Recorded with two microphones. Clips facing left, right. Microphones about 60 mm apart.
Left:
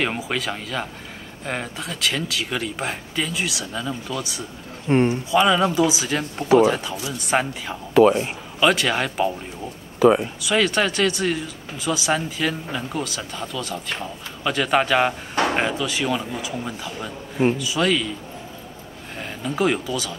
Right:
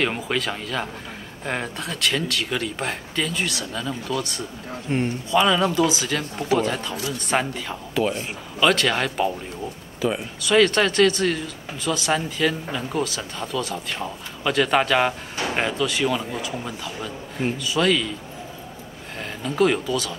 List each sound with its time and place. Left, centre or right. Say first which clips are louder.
0.0 s speech: right 1 dB; centre
4.9 s speech: left 6 dB; left
5.3 s speech: right 1 dB; centre
9.9 s speech: left 9 dB; left
10.4 s speech: right 7 dB; centre
19.1 s speech: right 2 dB; centre